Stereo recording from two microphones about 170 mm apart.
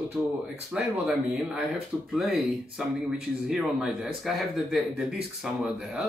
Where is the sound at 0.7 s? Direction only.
5° right (ahead or behind).